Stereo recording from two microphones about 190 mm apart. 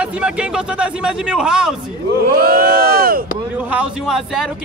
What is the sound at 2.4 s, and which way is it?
Speech, 50° right (ahead or behind).